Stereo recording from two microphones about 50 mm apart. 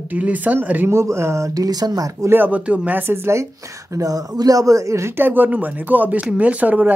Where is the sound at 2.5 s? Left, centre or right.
Right.